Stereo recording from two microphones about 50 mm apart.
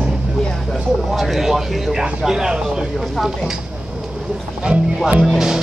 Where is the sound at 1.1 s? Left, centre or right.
Centre.